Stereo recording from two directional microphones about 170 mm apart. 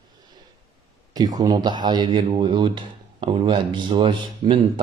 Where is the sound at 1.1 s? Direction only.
25° right (ahead or behind).